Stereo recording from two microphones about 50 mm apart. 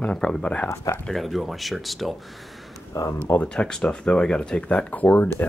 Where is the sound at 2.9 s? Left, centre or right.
Left.